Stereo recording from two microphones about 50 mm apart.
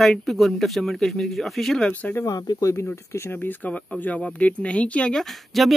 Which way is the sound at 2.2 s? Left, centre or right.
Left.